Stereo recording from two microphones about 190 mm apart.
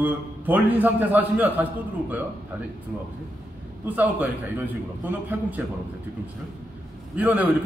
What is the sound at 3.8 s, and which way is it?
Speech, 10° right (ahead or behind).